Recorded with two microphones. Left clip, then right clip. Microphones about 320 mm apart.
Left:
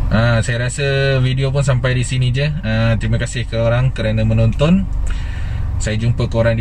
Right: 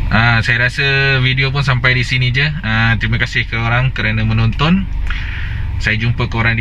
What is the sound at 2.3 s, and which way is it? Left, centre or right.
Speech, right.